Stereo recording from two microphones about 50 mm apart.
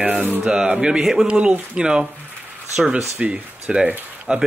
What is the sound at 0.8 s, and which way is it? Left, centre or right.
Speech, centre.